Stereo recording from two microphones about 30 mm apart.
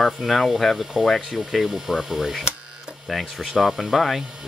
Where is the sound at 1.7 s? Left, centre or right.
Centre.